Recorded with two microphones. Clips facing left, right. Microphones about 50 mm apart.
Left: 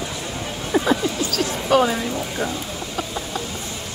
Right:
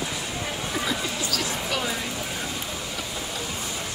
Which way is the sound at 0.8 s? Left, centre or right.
Left.